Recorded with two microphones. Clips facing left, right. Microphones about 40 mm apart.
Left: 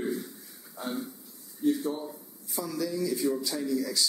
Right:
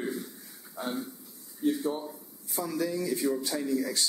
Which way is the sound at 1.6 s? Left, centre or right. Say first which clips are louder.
Left 1 dB; right.